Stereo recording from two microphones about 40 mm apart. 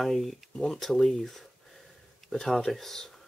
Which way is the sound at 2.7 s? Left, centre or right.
Centre.